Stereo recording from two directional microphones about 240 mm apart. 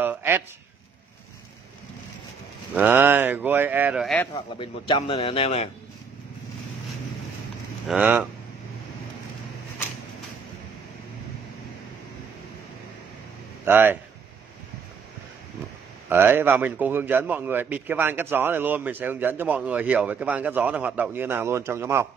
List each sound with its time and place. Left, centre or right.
0.0 s a sound: centre
2.7 s a man's voice: centre
4.3 s a man's voice: centre
7.9 s speech: centre
13.7 s a man's voice: centre
16.1 s a man's voice: centre